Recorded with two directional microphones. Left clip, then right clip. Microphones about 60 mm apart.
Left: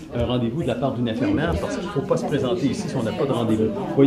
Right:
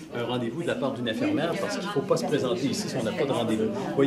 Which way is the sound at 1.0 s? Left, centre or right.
Centre.